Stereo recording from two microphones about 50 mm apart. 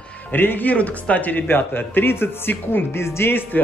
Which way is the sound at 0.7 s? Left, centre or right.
Left.